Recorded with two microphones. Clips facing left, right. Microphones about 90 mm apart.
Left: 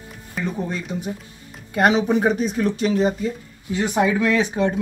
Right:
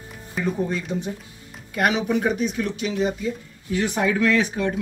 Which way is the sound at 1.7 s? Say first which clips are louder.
Left 4 dB; 30° left (ahead or behind).